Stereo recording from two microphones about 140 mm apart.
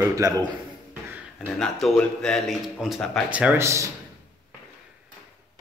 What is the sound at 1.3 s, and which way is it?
A man's voice, 5° left (ahead or behind).